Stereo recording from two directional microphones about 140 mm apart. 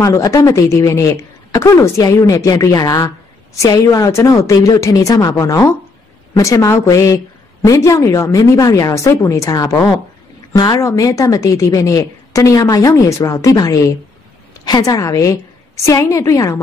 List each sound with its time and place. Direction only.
0.0 s a woman's voice: 25° left (ahead or behind)